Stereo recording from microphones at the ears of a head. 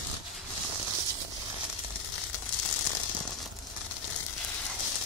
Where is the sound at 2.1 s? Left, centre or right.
Left.